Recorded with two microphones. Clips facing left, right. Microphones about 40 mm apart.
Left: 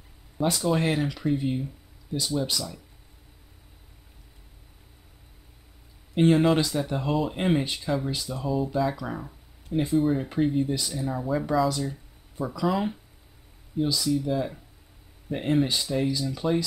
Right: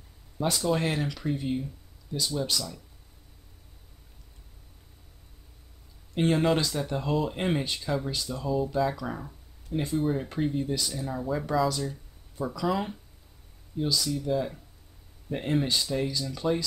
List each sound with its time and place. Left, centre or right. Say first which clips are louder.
0.4 s speech: left 2 dB; centre
6.1 s speech: left 4 dB; centre